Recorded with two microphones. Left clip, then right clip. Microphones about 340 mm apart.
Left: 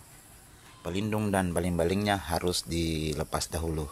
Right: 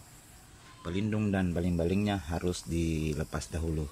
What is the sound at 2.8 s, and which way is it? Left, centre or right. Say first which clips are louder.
Speech: left 2 dB; left.